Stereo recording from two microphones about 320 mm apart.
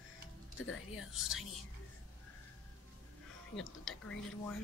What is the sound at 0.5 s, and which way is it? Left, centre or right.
Speech, left.